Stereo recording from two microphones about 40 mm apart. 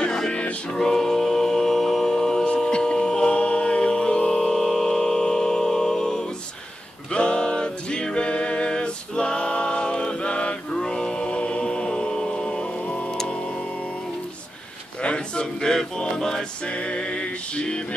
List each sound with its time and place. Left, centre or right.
0.0 s music: centre
0.7 s a capella: centre
7.1 s a sound: left
13.1 s music: centre
15.0 s a sound: left
16.6 s music: left